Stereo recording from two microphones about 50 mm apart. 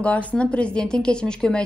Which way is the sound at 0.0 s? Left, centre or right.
Left.